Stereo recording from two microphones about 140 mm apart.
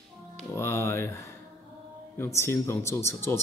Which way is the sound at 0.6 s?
20° left (ahead or behind).